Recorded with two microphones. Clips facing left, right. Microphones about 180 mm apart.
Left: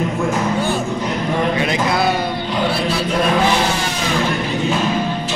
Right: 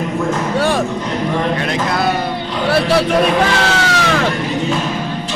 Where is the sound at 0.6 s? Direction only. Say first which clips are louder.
Right 4 dB; 90° right.